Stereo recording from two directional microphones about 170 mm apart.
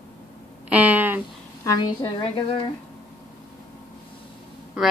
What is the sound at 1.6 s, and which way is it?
Speech, 20° left (ahead or behind).